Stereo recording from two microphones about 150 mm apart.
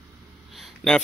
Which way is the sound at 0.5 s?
Centre (ahead or behind).